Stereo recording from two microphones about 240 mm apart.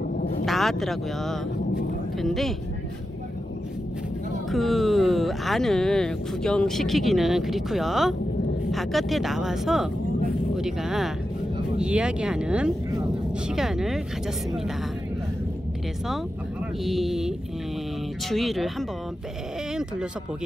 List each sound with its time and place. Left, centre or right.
0.1 s vehicle: left
0.5 s speech: centre
4.5 s speech: centre
16.8 s speech: centre
18.3 s speech: centre
19.7 s a sound: centre